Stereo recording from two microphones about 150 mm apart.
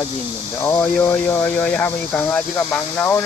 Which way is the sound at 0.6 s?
15° left (ahead or behind).